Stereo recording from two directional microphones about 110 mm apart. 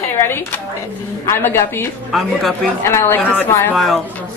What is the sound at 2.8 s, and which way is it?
Speech, 25° left (ahead or behind).